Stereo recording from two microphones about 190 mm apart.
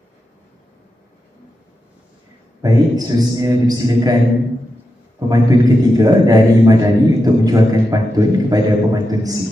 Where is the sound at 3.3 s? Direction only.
20° right (ahead or behind).